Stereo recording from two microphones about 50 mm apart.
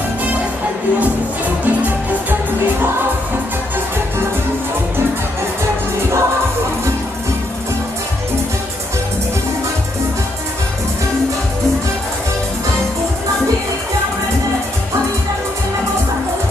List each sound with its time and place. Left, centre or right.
1.6 s music: right